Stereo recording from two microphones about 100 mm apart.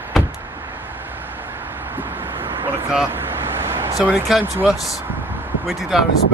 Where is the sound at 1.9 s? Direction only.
20° right (ahead or behind).